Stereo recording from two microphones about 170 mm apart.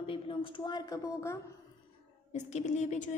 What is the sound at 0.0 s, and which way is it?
A woman's voice, 30° left (ahead or behind).